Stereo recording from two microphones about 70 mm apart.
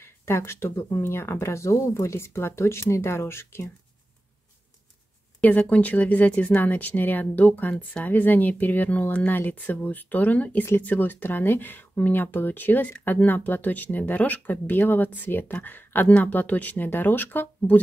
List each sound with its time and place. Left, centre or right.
0.0 s speech: left
5.4 s speech: centre